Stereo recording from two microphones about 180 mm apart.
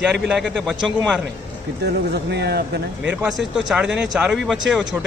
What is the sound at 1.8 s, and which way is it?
Speech, 65° right (ahead or behind).